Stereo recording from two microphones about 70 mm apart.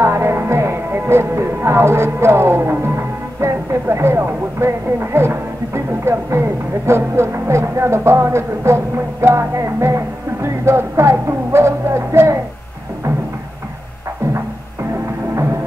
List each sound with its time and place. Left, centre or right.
0.0 s music: right